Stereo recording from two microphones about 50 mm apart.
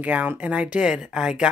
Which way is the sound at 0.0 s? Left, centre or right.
Right.